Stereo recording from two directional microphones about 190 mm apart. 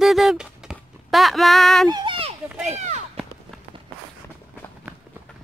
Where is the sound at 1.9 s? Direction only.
25° right (ahead or behind).